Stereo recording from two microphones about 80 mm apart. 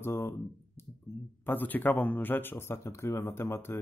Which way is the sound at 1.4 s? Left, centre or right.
Left.